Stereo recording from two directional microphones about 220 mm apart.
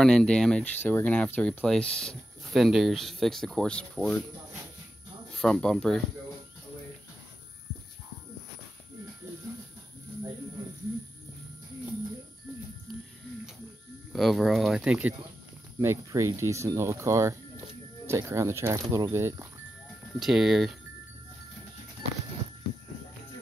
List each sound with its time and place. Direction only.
0.0 s speech: 5° left (ahead or behind)
5.4 s speech: 5° left (ahead or behind)
14.1 s speech: centre (ahead or behind)
20.2 s speech: centre (ahead or behind)